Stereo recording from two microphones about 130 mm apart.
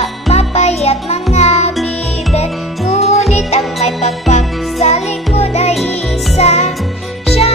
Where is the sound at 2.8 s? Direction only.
55° left (ahead or behind).